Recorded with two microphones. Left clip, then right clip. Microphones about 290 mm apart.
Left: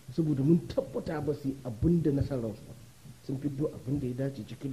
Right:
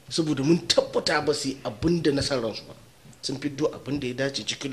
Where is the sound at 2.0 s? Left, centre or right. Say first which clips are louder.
Right 7 dB; centre.